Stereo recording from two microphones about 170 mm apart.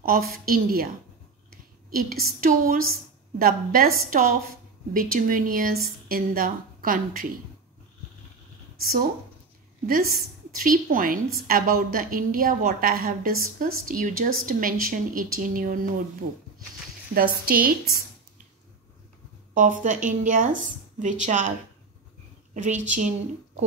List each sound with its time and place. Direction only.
0.0 s a woman's voice: 60° right (ahead or behind)
1.9 s a woman's voice: 60° right (ahead or behind)
9.8 s a woman's voice: 55° right (ahead or behind)
17.1 s a woman's voice: 60° right (ahead or behind)
19.5 s speech: 50° right (ahead or behind)